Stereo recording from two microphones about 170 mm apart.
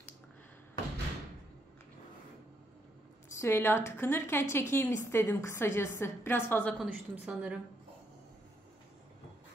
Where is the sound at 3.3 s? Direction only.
15° left (ahead or behind).